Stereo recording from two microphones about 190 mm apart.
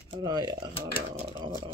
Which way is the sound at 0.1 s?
20° right (ahead or behind).